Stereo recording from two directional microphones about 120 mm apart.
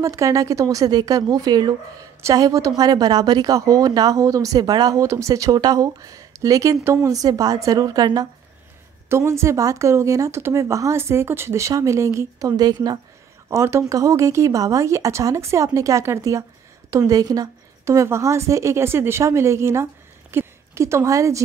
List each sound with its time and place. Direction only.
0.0 s a woman's voice: 25° right (ahead or behind)
9.1 s a woman's voice: 25° right (ahead or behind)
13.5 s a woman's voice: 25° right (ahead or behind)